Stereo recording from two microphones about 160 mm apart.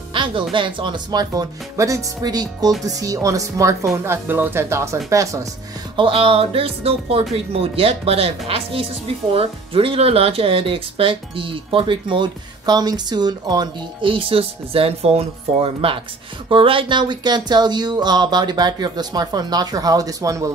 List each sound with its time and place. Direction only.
0.1 s speech: 30° right (ahead or behind)
5.9 s speech: 35° right (ahead or behind)